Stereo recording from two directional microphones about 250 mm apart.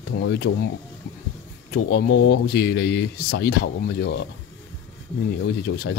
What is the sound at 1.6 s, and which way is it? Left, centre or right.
Speech, left.